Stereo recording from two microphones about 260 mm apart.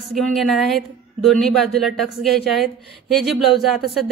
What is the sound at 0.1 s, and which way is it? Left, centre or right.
Speech, centre.